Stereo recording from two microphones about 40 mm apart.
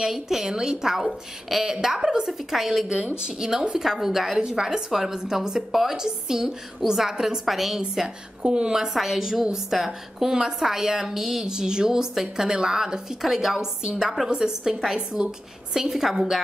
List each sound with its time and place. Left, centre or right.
0.1 s a woman's voice: centre
0.9 s a woman's voice: centre
4.4 s a woman's voice: centre
5.7 s a woman's voice: centre
5.9 s a woman's voice: centre
7.8 s speech: centre
8.7 s a woman's voice: centre
11.4 s a woman's voice: centre